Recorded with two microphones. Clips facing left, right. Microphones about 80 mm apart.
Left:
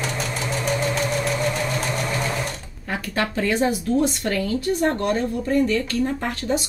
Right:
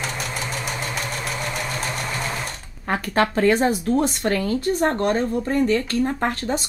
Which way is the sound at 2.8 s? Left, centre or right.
Right.